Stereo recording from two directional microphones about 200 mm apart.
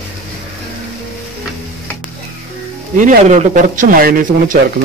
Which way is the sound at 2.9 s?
40° right (ahead or behind).